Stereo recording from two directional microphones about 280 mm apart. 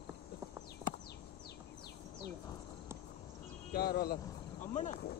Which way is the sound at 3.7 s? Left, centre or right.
Left.